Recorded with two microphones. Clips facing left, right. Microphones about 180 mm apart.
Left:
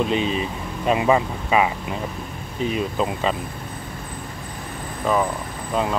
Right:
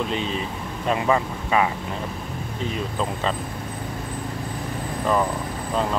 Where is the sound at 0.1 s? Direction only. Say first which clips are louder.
Left 4 dB; 15° left (ahead or behind).